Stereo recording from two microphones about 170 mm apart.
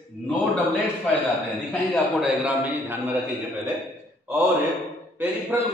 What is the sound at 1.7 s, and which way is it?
Speech, 10° left (ahead or behind).